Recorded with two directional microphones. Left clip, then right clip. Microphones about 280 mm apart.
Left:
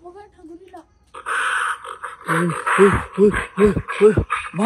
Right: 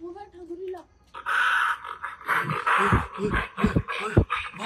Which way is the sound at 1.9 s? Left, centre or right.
Left.